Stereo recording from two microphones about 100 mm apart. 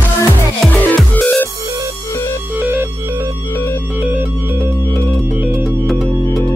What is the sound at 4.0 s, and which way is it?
Music, 15° right (ahead or behind).